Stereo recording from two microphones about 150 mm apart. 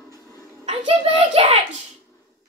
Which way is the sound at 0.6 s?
40° right (ahead or behind).